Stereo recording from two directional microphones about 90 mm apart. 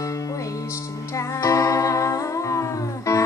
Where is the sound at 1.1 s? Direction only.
35° left (ahead or behind).